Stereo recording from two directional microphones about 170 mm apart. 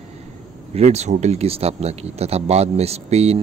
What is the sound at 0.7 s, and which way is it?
Speech, 40° right (ahead or behind).